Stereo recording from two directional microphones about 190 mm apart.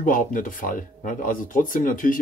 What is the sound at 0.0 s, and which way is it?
Speech, 45° left (ahead or behind).